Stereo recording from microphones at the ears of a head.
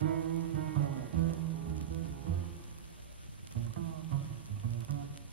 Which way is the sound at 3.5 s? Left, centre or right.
Right.